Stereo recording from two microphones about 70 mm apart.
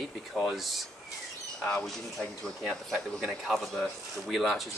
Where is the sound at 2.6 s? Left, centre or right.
Centre.